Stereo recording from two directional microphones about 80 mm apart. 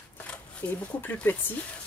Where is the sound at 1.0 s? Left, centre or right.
Left.